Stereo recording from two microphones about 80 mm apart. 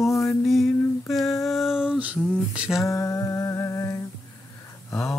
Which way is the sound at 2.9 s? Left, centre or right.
Left.